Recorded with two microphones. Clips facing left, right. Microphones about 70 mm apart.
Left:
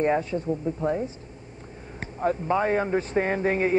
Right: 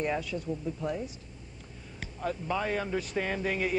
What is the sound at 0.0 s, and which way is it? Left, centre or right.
Speech, left.